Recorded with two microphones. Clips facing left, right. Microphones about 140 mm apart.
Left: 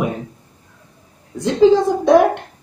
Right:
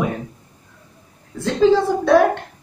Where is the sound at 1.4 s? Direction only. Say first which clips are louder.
Left 3 dB; 15° left (ahead or behind).